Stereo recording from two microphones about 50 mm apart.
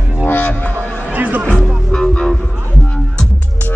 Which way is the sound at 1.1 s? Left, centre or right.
Right.